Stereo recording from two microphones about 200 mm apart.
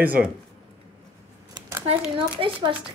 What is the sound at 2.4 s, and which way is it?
Speech, 25° right (ahead or behind).